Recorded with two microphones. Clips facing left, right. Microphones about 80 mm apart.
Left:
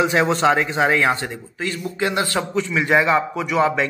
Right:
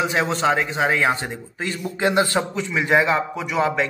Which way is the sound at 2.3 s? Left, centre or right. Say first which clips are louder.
Left 1 dB; centre.